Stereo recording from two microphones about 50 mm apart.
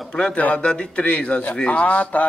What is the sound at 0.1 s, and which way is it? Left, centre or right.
Speech, centre.